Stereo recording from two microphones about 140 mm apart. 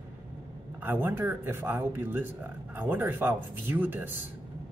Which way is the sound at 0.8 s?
15° right (ahead or behind).